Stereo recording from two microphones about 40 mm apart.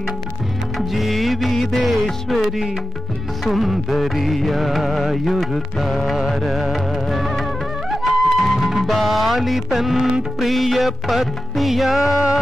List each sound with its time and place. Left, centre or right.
0.7 s music: centre